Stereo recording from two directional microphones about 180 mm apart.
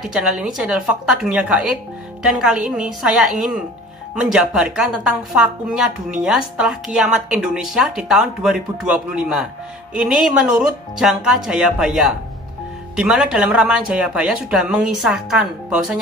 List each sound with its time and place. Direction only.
0.0 s a woman's voice: 5° right (ahead or behind)